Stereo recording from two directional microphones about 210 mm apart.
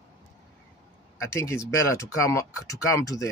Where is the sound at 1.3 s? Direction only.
15° left (ahead or behind).